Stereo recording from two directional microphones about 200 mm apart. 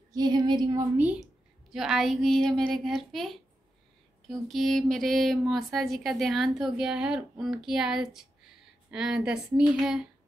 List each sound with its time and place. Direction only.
0.1 s child singing: 20° right (ahead or behind)
0.9 s speech: 5° right (ahead or behind)